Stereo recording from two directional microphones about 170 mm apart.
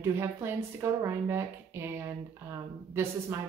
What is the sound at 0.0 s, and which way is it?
Speech, 15° right (ahead or behind).